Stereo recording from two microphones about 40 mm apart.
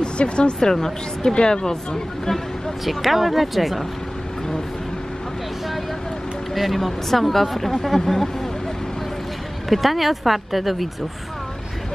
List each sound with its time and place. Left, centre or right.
0.0 s speech: left
0.6 s speech: centre
2.8 s speech: centre
6.5 s speech: centre
9.7 s speech: centre